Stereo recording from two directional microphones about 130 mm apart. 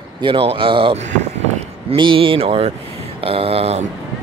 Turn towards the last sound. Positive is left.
turn(degrees=-55)  # may be behind; listen again after turning